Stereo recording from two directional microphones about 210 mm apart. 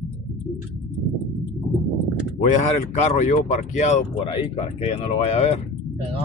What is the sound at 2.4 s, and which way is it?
Speech, 35° left (ahead or behind).